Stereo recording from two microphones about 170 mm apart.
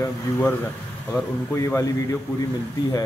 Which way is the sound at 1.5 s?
15° left (ahead or behind).